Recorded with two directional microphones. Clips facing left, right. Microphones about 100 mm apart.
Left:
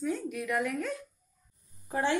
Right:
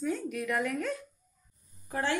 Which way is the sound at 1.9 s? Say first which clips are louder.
Left 2 dB; 20° left (ahead or behind).